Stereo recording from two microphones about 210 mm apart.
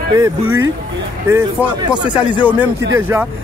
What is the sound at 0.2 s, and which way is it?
Speech, 15° right (ahead or behind).